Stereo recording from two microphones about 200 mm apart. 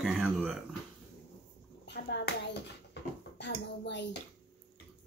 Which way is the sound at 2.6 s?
60° left (ahead or behind).